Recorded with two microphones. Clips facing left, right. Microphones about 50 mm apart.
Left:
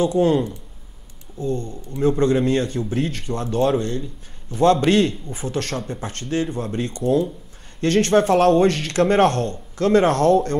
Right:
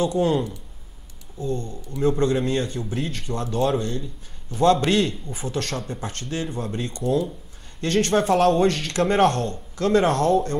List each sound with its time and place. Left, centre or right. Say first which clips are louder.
0.0 s speech: left 3 dB; left
1.4 s a man's voice: left 3 dB; left